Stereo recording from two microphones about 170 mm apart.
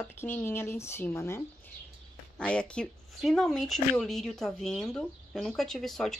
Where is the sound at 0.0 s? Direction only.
10° left (ahead or behind).